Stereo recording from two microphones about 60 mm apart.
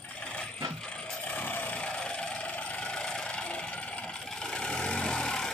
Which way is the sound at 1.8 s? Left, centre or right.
Centre.